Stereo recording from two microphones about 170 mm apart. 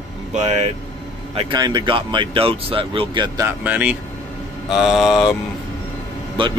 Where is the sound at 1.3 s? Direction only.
25° right (ahead or behind).